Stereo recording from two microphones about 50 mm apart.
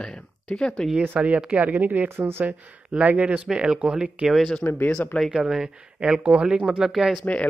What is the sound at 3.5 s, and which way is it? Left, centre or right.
Speech, centre.